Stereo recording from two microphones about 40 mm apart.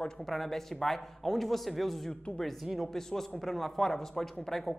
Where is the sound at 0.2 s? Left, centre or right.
Centre.